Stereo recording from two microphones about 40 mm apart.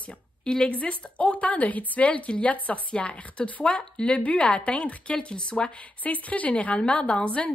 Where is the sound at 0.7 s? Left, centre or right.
Left.